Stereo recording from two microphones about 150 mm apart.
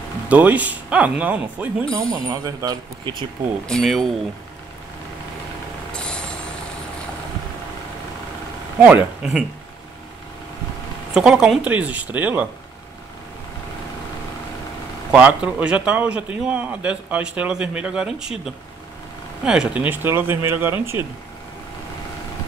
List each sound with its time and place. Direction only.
0.3 s a man's voice: 10° right (ahead or behind)
1.9 s speech: 5° left (ahead or behind)
2.2 s speech: 25° right (ahead or behind)
3.6 s speech: 5° left (ahead or behind)
5.9 s vehicle: 5° left (ahead or behind)
8.7 s a man's voice: 10° right (ahead or behind)
11.1 s a man's voice: 5° right (ahead or behind)
15.0 s a man's voice: 10° right (ahead or behind)